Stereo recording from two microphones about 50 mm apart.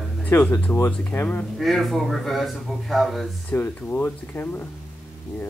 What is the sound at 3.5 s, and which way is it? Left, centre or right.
Speech, left.